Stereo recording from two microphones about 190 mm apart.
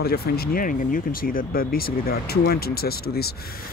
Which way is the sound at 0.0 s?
55° left (ahead or behind).